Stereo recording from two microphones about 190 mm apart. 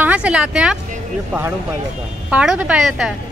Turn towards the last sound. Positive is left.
turn(degrees=-5)  # may be behind; listen again after turning